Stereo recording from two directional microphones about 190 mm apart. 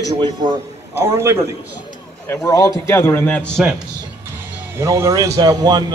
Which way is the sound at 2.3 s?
15° left (ahead or behind).